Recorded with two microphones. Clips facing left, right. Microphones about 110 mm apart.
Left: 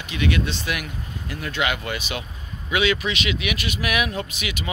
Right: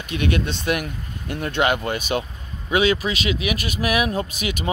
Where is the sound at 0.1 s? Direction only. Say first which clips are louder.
Right 1 dB; 50° right (ahead or behind).